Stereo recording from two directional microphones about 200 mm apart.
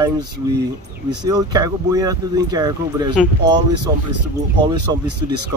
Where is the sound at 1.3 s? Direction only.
20° right (ahead or behind).